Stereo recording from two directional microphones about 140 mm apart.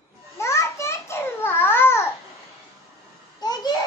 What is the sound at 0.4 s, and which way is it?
Babbling, 20° left (ahead or behind).